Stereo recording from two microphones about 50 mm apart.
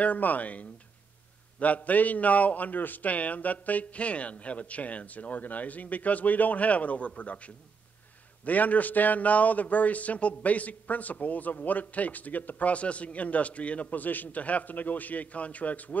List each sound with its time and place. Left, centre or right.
0.0 s speech: left